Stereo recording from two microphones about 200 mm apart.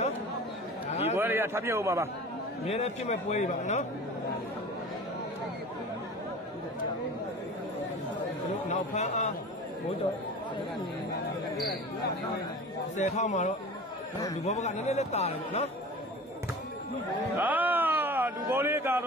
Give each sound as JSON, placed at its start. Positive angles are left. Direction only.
{"t": 1.1, "sound": "a man's voice", "side_deg": -10}
{"t": 2.6, "sound": "speech", "side_deg": 30}
{"t": 8.6, "sound": "speech", "side_deg": 35}
{"t": 12.9, "sound": "speech", "side_deg": 35}
{"t": 17.4, "sound": "a sound", "side_deg": -10}